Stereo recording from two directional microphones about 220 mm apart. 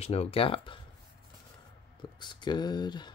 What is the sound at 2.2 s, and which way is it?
Speech, 20° left (ahead or behind).